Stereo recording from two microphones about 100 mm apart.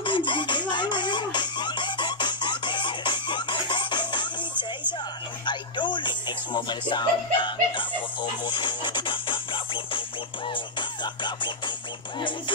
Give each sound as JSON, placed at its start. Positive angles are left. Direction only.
{"t": 0.0, "sound": "music", "side_deg": 55}